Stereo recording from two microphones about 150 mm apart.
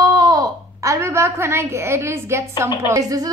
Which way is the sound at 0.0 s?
25° right (ahead or behind).